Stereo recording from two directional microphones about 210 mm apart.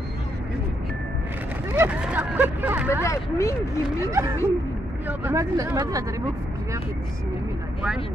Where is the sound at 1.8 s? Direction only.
5° right (ahead or behind).